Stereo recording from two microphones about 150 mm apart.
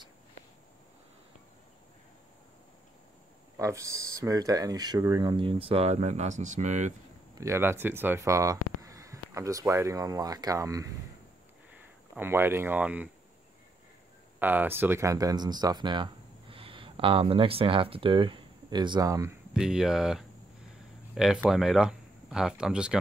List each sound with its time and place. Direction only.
3.5 s speech: 20° right (ahead or behind); by 6.9 s 50° right (ahead or behind)
7.3 s speech: 20° right (ahead or behind)
12.2 s speech: 15° right (ahead or behind)
14.4 s speech: 10° right (ahead or behind)
19.5 s speech: 5° right (ahead or behind)